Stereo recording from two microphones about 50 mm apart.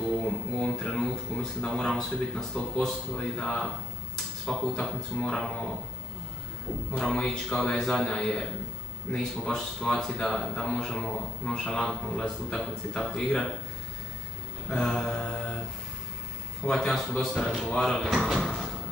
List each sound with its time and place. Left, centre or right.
0.2 s a sound: centre
1.3 s a sound: centre
1.7 s speech: centre
4.7 s speech: centre
7.0 s speech: centre
14.7 s speech: centre
16.6 s speech: centre
17.3 s speech: centre
17.6 s speech: centre